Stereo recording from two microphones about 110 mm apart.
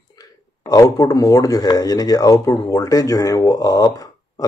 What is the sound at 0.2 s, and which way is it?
Speech, 35° left (ahead or behind).